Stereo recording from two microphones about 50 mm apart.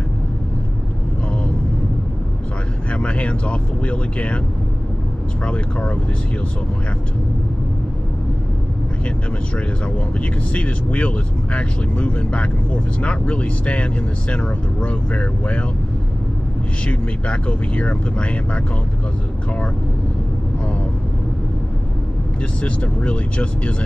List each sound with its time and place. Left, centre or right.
2.9 s speech: left
5.4 s speech: left
10.5 s speech: left
16.8 s speech: left
22.6 s speech: left